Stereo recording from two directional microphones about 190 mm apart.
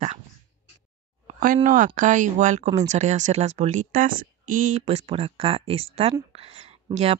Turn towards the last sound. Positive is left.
turn(degrees=-35)  # may be behind; listen again after turning